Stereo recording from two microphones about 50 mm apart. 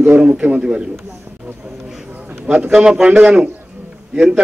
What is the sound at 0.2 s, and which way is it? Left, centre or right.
Speech, right.